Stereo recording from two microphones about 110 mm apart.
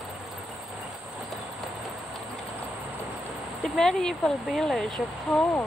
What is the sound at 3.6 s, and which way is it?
Speech, 5° left (ahead or behind).